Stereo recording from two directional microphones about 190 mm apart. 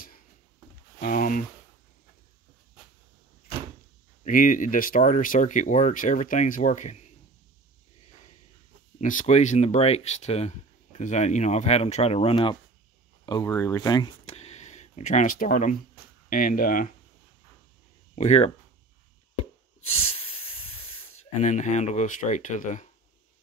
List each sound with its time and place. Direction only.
1.0 s a sound: 45° left (ahead or behind)
4.2 s speech: 45° left (ahead or behind)
9.0 s speech: 40° left (ahead or behind)
18.1 s speech: 35° left (ahead or behind)
19.8 s breathing: 30° left (ahead or behind)
21.4 s speech: 40° left (ahead or behind)